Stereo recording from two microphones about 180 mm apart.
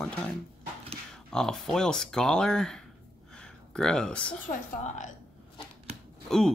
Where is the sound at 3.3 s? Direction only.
5° left (ahead or behind).